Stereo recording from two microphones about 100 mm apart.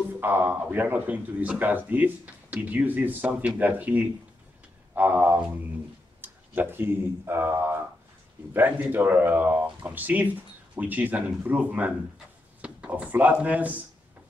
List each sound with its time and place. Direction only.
0.2 s speech: 20° right (ahead or behind)